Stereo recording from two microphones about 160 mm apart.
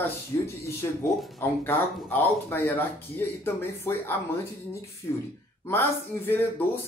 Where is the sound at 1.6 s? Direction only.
10° left (ahead or behind).